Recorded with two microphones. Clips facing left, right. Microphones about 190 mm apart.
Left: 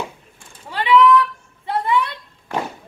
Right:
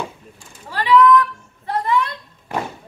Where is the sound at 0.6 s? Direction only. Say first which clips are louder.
Even; 10° left (ahead or behind).